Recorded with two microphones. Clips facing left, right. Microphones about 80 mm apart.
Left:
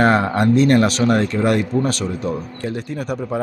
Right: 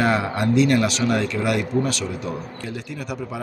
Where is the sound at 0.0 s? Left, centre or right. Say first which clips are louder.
Left 5 dB; left.